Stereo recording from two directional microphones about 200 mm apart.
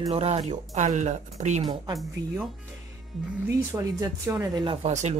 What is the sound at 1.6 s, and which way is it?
Speech, 20° right (ahead or behind).